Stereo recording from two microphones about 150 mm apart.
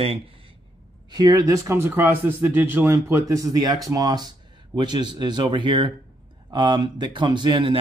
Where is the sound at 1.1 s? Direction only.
25° right (ahead or behind).